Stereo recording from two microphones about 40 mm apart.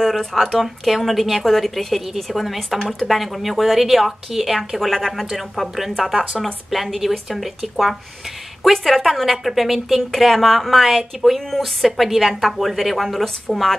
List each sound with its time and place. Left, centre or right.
0.0 s speech: centre